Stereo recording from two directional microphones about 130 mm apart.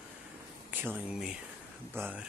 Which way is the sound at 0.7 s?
15° right (ahead or behind).